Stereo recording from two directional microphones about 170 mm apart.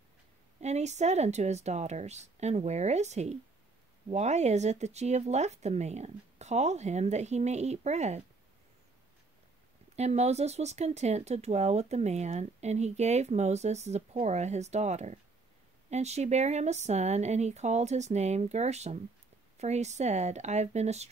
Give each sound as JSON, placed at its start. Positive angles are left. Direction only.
{"t": 0.6, "sound": "speech", "side_deg": -40}
{"t": 9.9, "sound": "speech", "side_deg": -40}